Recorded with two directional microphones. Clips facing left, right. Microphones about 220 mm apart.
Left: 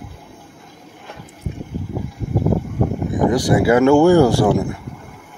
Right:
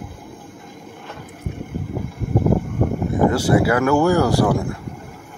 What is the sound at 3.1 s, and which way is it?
Speech, 15° left (ahead or behind).